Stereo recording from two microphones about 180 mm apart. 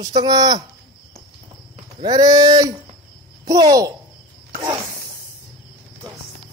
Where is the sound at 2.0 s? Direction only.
20° right (ahead or behind).